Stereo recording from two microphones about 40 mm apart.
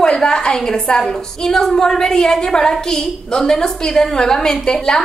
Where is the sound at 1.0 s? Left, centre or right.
Centre.